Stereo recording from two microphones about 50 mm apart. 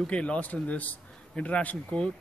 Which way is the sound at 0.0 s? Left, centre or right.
Left.